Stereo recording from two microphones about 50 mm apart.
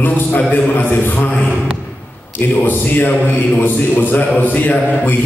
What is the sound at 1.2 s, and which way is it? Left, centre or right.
Speech, left.